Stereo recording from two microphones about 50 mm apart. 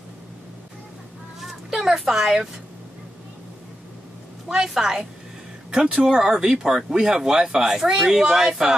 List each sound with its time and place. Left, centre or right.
1.5 s a child's voice: centre
4.5 s speech: centre